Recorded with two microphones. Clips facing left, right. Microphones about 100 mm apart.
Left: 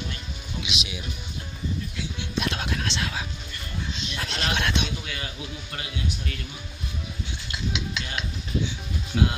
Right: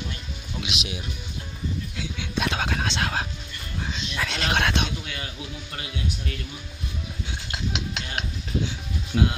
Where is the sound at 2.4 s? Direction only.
90° right; by 3.2 s 70° right (ahead or behind).